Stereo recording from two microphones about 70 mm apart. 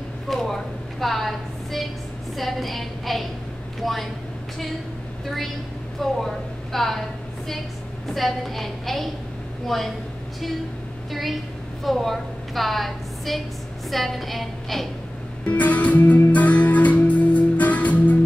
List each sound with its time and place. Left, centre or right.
0.3 s a sound: centre
2.3 s a woman's voice: centre
6.2 s a woman's voice: centre
8.1 s a woman's voice: centre
11.1 s a woman's voice: centre
15.4 s music: left